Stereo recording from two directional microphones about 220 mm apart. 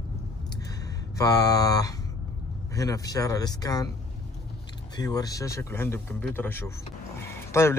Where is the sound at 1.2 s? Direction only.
15° left (ahead or behind).